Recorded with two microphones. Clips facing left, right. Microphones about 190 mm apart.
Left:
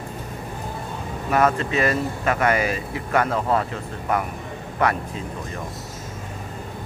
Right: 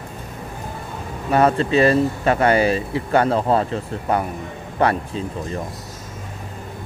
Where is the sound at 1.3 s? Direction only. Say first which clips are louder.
Right 4 dB; 30° right (ahead or behind).